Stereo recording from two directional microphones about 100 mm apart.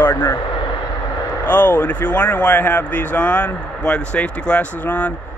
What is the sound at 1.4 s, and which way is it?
Speech, 20° left (ahead or behind).